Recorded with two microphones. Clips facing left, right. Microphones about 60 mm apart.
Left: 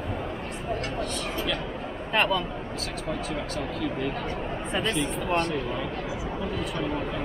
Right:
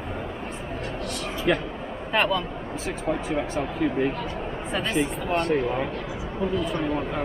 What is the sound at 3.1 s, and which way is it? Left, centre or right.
Speech, right.